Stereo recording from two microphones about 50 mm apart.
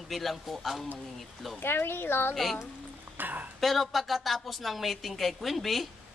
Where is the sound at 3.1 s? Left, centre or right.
Right.